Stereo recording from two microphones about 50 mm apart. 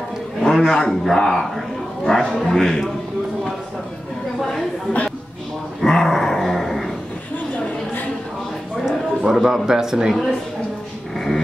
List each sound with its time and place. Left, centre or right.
0.4 s a man's voice: centre
4.4 s a sound: centre
5.8 s dog: centre
7.5 s chatter: left
8.8 s speech: centre
11.1 s dog: centre